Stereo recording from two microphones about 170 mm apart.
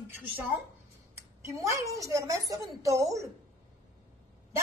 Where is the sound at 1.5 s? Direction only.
20° right (ahead or behind).